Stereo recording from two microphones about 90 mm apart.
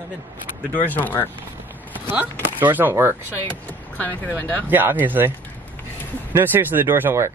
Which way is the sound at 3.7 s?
20° left (ahead or behind).